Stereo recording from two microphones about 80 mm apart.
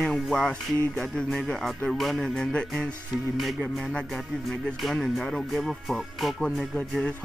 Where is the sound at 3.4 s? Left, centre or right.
Centre.